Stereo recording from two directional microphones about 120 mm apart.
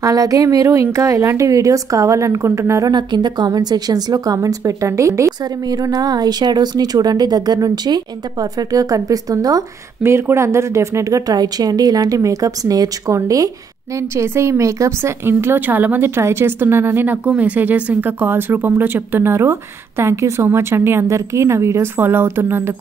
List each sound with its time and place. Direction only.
0.0 s a woman's voice: 30° right (ahead or behind)
2.9 s a woman's voice: 40° right (ahead or behind); by 22.8 s 20° right (ahead or behind)